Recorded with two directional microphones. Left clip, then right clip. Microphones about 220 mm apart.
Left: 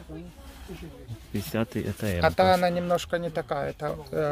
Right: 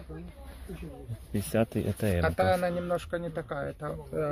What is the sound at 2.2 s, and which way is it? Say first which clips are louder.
Speech: left 7 dB; 40° left (ahead or behind).